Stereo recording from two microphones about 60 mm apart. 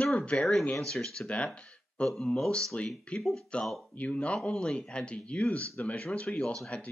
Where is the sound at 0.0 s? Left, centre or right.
Centre.